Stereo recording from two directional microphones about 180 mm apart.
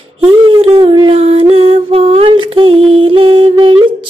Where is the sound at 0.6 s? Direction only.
25° right (ahead or behind).